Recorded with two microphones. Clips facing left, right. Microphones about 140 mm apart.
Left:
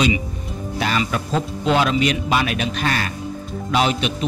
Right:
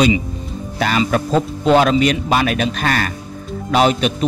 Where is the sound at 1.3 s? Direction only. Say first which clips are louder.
Right 5 dB; 45° right (ahead or behind).